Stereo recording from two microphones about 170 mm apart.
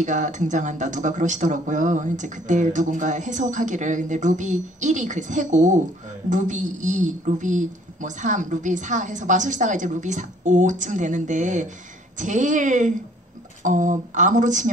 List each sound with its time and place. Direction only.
0.0 s speech: 45° right (ahead or behind)